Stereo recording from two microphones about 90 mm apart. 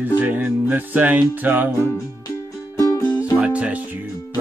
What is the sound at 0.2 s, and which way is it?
Music, 15° right (ahead or behind).